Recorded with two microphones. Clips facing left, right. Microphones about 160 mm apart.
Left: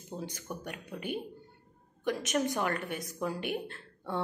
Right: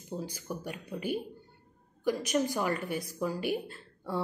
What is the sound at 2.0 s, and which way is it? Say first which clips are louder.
Speech: right 2 dB; 5° right (ahead or behind).